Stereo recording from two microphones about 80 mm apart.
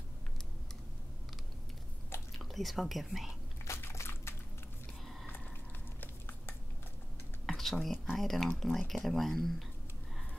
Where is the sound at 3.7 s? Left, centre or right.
Left.